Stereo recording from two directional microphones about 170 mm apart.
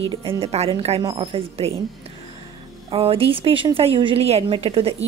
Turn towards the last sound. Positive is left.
turn(degrees=-35)  # may be behind; listen again after turning